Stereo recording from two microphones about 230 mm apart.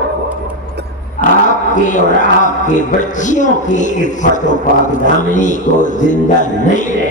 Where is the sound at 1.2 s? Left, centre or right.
Left.